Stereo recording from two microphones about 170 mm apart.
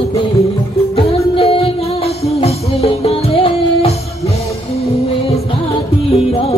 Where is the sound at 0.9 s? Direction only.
35° left (ahead or behind).